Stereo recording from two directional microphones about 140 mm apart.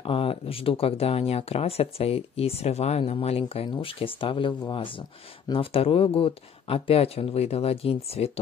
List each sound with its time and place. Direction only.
0.0 s speech: 40° left (ahead or behind)